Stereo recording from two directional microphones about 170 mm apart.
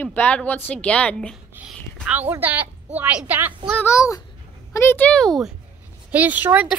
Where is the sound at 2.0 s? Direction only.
10° right (ahead or behind).